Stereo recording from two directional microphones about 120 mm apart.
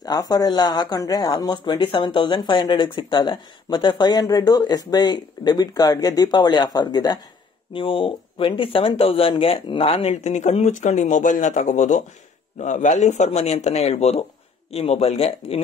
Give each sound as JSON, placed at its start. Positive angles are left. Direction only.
{"t": 0.0, "sound": "speech", "side_deg": 30}
{"t": 7.7, "sound": "speech", "side_deg": 45}
{"t": 10.1, "sound": "speech", "side_deg": 70}